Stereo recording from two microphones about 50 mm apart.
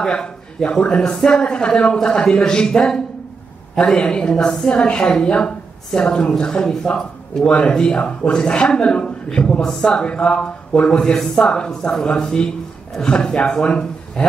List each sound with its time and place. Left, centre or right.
0.0 s a woman's voice: centre